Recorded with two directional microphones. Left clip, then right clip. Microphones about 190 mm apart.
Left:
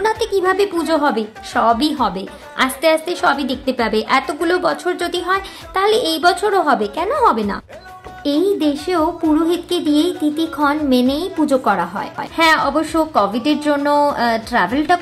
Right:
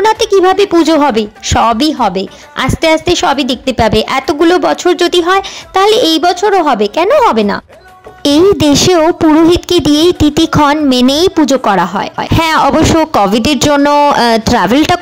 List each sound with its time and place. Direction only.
0.0 s speech: 40° right (ahead or behind)
8.2 s speech: 55° right (ahead or behind)